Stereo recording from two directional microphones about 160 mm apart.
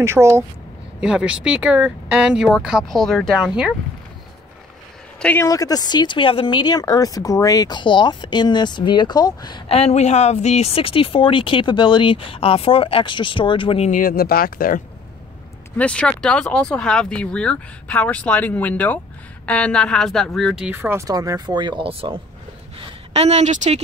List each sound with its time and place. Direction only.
0.0 s speech: 15° right (ahead or behind)
1.0 s speech: 5° right (ahead or behind)
5.2 s speech: 15° left (ahead or behind)
9.7 s speech: 40° left (ahead or behind)
13.8 s speech: 60° left (ahead or behind)
15.8 s speech: 5° left (ahead or behind); by 21.0 s 10° right (ahead or behind)
21.1 s a woman's voice: 20° right (ahead or behind); by 23.8 s 45° right (ahead or behind)